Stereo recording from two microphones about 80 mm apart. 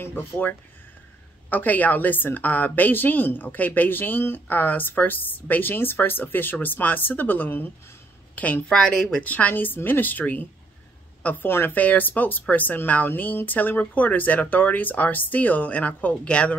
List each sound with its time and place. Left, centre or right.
0.0 s a woman's voice: left